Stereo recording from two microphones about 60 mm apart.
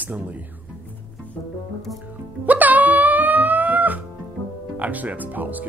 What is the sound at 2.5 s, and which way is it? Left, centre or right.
Music, right.